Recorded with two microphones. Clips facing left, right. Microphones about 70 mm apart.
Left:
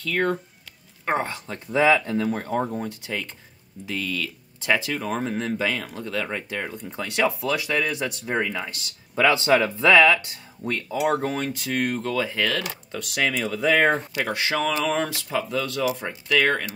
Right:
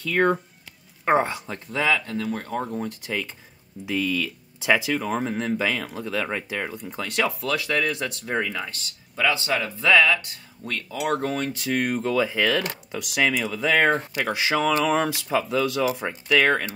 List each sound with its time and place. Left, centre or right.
0.0 s speech: centre
1.7 s speech: centre
2.4 s speech: centre
3.8 s speech: centre
9.3 s speech: left
10.6 s speech: centre